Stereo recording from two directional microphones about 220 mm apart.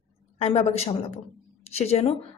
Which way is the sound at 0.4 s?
30° left (ahead or behind).